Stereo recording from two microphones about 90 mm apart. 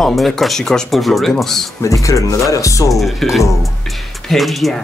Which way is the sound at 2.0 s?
35° left (ahead or behind).